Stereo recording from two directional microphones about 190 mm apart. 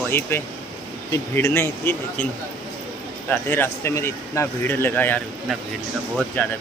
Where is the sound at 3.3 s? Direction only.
10° left (ahead or behind).